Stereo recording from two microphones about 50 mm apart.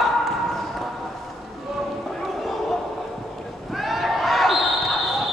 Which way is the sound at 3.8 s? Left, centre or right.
Centre.